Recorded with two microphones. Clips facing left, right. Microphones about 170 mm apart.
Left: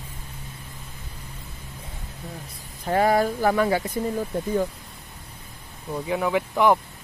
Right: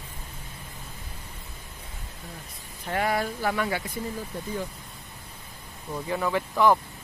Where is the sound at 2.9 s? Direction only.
35° left (ahead or behind).